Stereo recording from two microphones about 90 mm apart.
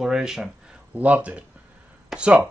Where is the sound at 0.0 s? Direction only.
5° right (ahead or behind).